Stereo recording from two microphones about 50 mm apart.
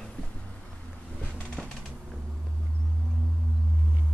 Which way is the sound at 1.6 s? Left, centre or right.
Centre.